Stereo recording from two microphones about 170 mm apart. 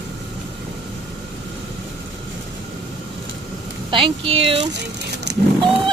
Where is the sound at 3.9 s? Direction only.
30° right (ahead or behind).